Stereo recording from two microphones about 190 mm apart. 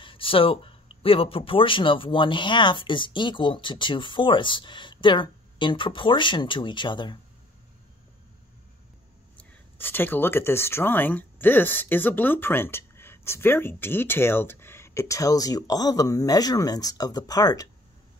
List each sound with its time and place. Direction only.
0.0 s speech: 30° left (ahead or behind)
9.4 s speech: 10° left (ahead or behind)